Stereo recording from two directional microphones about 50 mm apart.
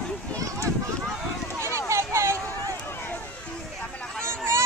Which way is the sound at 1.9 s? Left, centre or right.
Right.